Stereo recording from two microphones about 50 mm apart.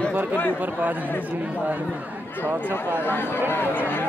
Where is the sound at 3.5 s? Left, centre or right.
Left.